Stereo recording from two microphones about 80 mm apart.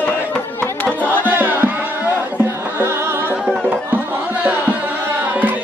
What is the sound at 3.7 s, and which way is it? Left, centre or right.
Tabla, right.